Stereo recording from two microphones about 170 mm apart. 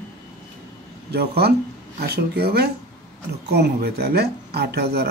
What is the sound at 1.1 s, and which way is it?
Speech, 70° right (ahead or behind).